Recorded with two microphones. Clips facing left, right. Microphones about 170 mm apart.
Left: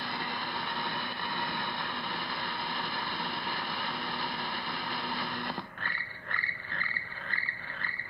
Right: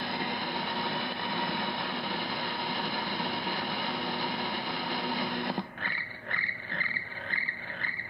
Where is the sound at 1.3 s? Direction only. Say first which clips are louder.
Right 3 dB; 55° right (ahead or behind).